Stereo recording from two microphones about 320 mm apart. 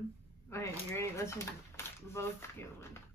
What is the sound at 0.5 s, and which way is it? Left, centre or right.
Speech, centre.